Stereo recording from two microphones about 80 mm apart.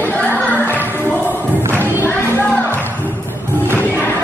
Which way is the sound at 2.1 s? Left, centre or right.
Left.